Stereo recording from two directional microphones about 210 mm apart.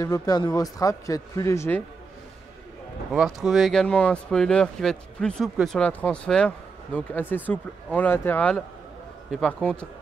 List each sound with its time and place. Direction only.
0.0 s a man's voice: 15° left (ahead or behind)
3.1 s speech: 5° right (ahead or behind)